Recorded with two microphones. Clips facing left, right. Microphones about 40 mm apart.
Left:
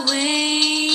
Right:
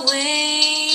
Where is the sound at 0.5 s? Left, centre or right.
Left.